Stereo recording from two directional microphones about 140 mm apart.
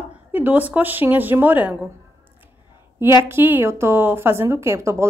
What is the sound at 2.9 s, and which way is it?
A woman's voice, 20° right (ahead or behind).